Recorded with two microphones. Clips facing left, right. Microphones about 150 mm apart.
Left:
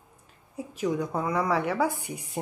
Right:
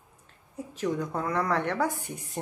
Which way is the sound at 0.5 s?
10° left (ahead or behind).